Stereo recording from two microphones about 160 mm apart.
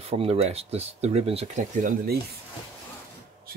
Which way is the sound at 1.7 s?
60° right (ahead or behind).